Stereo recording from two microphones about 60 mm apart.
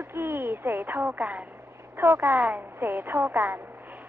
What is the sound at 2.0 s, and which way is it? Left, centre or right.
Speech, right.